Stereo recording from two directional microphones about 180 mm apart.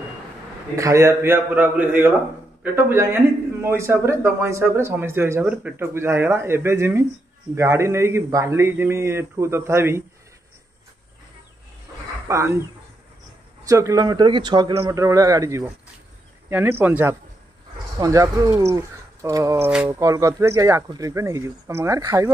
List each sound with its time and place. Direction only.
0.7 s a man's voice: 15° right (ahead or behind)
12.3 s a man's voice: 15° right (ahead or behind)
13.7 s a man's voice: 15° right (ahead or behind)